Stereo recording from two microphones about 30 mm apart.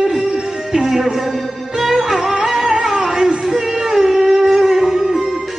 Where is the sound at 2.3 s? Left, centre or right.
Right.